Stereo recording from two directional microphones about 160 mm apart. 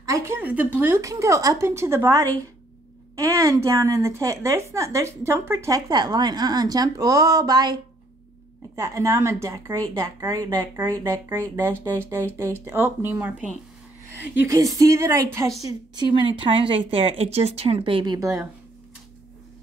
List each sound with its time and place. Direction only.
0.0 s a woman's voice: 20° right (ahead or behind)
8.7 s a woman's voice: 20° right (ahead or behind)